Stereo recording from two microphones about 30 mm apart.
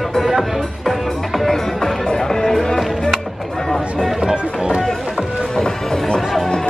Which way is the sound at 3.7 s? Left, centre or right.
Centre.